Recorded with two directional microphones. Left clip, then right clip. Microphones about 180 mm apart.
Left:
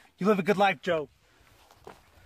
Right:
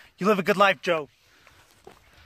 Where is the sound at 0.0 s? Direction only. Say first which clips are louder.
Right 3 dB; 15° right (ahead or behind).